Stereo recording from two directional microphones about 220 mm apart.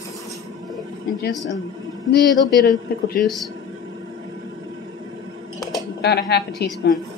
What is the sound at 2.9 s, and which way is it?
Speech, 45° left (ahead or behind).